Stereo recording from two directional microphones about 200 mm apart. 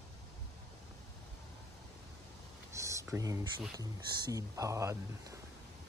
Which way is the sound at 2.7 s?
15° right (ahead or behind).